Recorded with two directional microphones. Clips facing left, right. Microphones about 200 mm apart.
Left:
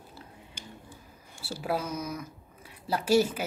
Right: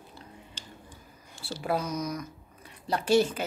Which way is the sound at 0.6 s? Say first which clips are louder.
Left 2 dB; 10° left (ahead or behind).